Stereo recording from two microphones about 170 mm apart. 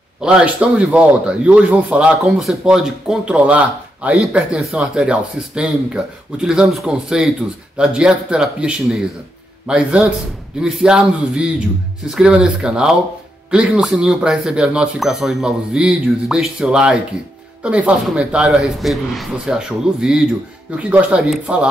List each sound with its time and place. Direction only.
0.2 s a man's voice: 5° right (ahead or behind)